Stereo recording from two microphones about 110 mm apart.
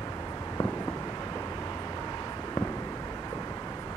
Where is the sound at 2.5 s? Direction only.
35° left (ahead or behind).